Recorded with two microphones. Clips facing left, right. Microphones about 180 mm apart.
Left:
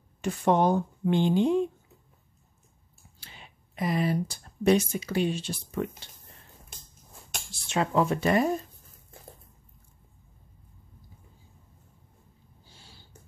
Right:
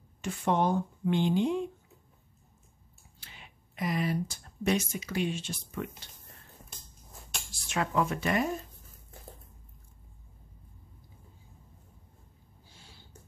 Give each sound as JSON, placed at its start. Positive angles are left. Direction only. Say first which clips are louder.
{"t": 0.2, "sound": "speech", "louder": "left 5 dB", "side_deg": 40}
{"t": 3.2, "sound": "speech", "louder": "left 3 dB", "side_deg": 30}
{"t": 7.6, "sound": "speech", "louder": "left 4 dB", "side_deg": 30}
{"t": 12.6, "sound": "a sound", "louder": "left 1 dB", "side_deg": 30}